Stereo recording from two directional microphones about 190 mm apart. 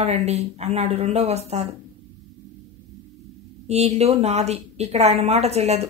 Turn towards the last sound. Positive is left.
turn(degrees=-35)  # may be behind; listen again after turning